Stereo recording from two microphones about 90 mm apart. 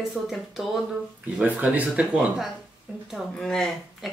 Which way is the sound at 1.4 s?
15° right (ahead or behind).